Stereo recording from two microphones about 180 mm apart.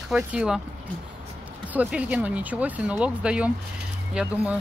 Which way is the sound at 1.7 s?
10° right (ahead or behind).